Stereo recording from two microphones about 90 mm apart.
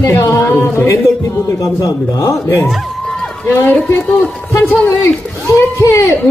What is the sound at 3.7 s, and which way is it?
Speech, 15° left (ahead or behind).